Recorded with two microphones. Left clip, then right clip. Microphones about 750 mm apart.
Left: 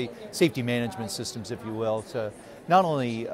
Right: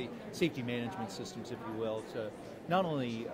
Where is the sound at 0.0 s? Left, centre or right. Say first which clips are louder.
Left 10 dB; left.